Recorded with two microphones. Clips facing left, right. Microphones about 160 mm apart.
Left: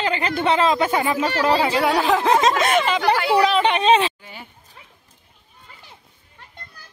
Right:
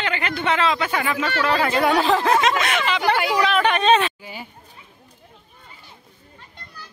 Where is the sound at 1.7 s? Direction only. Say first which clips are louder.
Even; 5° left (ahead or behind).